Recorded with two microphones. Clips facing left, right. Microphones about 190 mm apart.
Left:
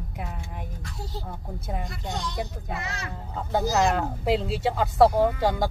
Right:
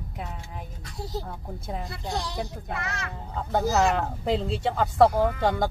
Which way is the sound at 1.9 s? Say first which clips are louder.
Right 1 dB; 35° right (ahead or behind).